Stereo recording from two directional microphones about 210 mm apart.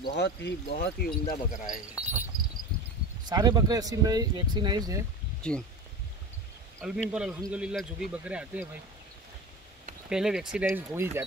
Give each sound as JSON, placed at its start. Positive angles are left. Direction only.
{"t": 0.1, "sound": "speech", "side_deg": 55}
{"t": 2.0, "sound": "speech", "side_deg": -5}
{"t": 3.3, "sound": "speech", "side_deg": -20}
{"t": 6.8, "sound": "speech", "side_deg": 0}
{"t": 10.0, "sound": "speech", "side_deg": -5}